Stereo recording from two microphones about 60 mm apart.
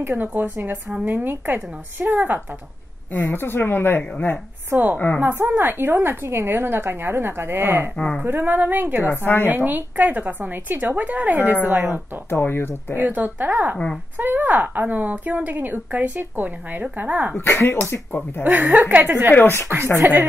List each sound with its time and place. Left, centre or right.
0.1 s a woman's voice: right
3.1 s speech: left
4.6 s a woman's voice: right
4.9 s a woman's voice: left
5.2 s a woman's voice: right
9.1 s speech: left
9.5 s a woman's voice: right
12.3 s speech: left
13.0 s a woman's voice: right
17.4 s speech: left
18.4 s a woman's voice: right
19.3 s speech: left
20.0 s a woman's voice: right